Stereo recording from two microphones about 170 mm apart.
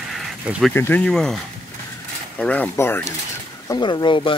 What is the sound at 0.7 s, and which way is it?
Speech, 10° left (ahead or behind).